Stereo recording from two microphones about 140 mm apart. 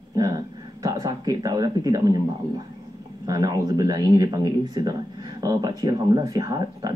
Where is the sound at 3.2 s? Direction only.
25° right (ahead or behind).